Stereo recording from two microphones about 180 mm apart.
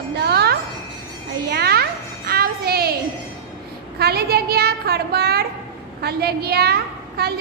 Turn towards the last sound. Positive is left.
turn(degrees=-60)  # may be behind; listen again after turning